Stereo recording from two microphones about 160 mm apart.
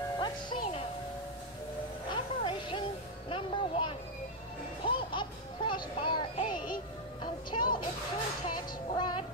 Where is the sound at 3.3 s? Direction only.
35° left (ahead or behind).